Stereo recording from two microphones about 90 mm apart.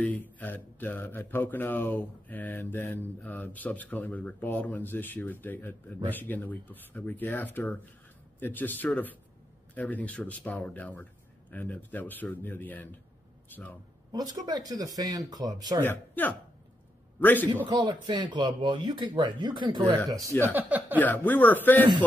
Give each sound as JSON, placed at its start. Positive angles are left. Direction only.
{"t": 0.0, "sound": "a man's voice", "side_deg": 20}
{"t": 14.1, "sound": "speech", "side_deg": -45}
{"t": 15.8, "sound": "speech", "side_deg": 20}
{"t": 17.6, "sound": "speech", "side_deg": -55}
{"t": 20.1, "sound": "speech", "side_deg": -40}
{"t": 20.4, "sound": "speech", "side_deg": -20}
{"t": 21.0, "sound": "speech", "side_deg": 20}